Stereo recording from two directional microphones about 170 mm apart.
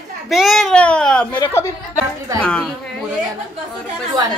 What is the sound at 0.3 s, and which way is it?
A woman's voice, centre (ahead or behind).